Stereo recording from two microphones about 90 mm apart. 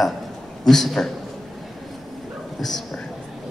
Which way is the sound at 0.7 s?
5° left (ahead or behind).